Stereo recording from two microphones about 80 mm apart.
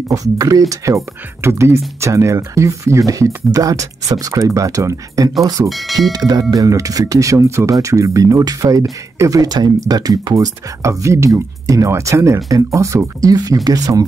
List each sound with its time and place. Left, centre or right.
0.1 s speech: right
5.7 s speech: centre
6.1 s speech: right
10.3 s speech: right